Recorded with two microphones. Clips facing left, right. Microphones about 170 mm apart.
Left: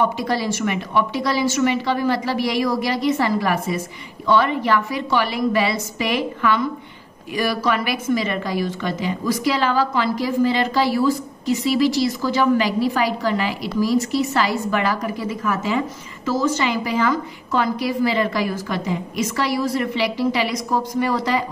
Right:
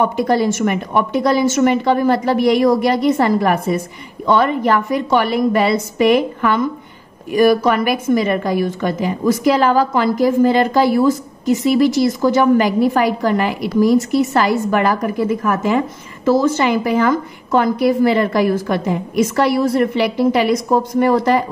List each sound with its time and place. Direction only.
0.0 s a woman's voice: 50° right (ahead or behind)